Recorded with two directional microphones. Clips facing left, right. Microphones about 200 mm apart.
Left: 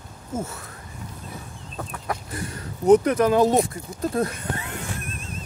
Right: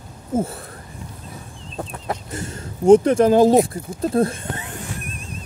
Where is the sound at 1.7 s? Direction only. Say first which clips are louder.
Right 3 dB; 25° right (ahead or behind).